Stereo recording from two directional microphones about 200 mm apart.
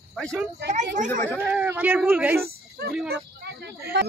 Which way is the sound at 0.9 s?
40° right (ahead or behind).